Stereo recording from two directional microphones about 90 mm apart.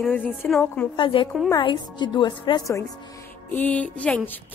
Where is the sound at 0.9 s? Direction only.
75° left (ahead or behind).